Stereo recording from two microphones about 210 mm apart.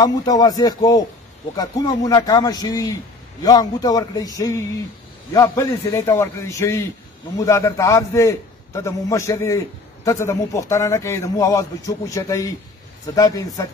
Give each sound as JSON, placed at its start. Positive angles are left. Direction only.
{"t": 0.0, "sound": "a man's voice", "side_deg": 20}